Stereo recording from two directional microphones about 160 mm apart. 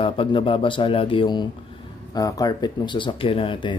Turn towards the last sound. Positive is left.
turn(degrees=30)  # may be behind; listen again after turning